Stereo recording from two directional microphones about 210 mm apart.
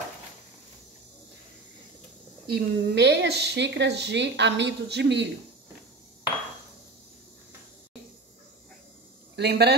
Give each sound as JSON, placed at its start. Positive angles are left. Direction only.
{"t": 2.4, "sound": "a woman's voice", "side_deg": -50}
{"t": 9.4, "sound": "speech", "side_deg": -50}